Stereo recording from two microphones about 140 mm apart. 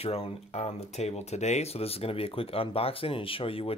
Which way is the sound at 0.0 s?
45° left (ahead or behind).